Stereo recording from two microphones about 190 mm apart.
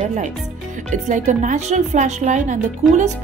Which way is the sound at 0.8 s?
40° right (ahead or behind).